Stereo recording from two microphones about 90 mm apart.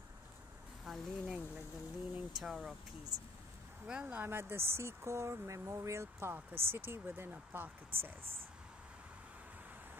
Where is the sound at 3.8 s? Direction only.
15° right (ahead or behind).